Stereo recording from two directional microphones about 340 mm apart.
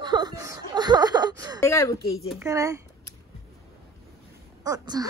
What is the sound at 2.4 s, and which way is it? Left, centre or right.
Speech, centre.